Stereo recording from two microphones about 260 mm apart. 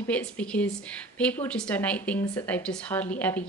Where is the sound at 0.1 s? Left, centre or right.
Centre.